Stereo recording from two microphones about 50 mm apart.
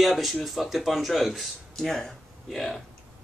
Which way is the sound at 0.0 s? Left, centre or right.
Centre.